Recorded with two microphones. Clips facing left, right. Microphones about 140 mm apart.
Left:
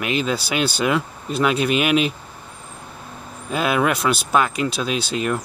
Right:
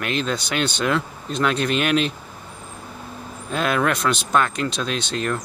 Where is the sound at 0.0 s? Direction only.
5° left (ahead or behind).